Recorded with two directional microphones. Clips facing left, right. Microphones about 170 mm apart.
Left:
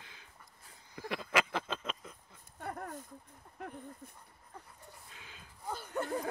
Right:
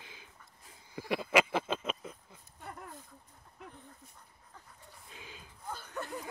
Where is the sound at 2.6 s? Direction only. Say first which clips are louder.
Left 5 dB; 50° left (ahead or behind).